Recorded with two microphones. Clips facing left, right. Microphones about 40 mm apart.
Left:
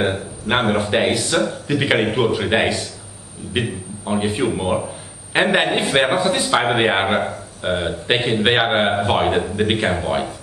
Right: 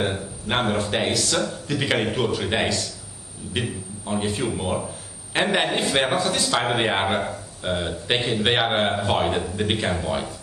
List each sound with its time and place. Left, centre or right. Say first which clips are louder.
0.0 s a man's voice: left 5 dB; left